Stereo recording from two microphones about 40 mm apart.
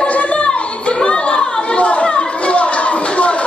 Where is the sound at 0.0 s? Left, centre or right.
Left.